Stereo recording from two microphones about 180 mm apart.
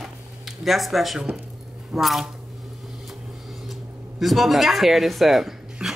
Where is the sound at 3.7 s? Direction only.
Centre (ahead or behind).